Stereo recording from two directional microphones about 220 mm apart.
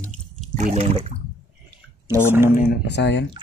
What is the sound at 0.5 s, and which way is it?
Speech, 30° right (ahead or behind).